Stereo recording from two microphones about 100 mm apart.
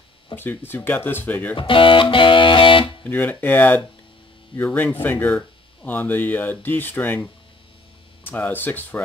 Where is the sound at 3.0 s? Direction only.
20° left (ahead or behind).